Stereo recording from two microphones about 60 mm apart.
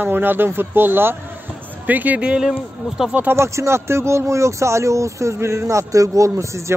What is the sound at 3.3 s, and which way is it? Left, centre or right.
Speech, right.